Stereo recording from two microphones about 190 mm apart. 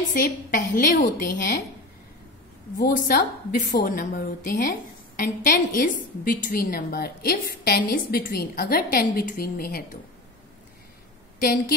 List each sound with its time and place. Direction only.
0.1 s a woman's voice: 45° left (ahead or behind)
2.8 s a woman's voice: 50° left (ahead or behind)
11.3 s a woman's voice: 50° left (ahead or behind)